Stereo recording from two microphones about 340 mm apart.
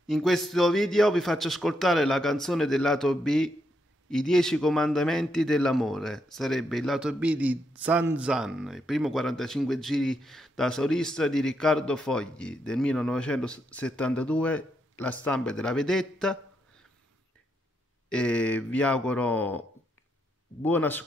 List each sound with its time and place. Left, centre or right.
0.0 s a man's voice: centre
18.1 s a man's voice: centre
20.6 s a man's voice: centre